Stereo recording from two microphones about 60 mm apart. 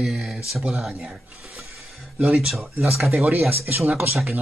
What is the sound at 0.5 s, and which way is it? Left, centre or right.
Speech, centre.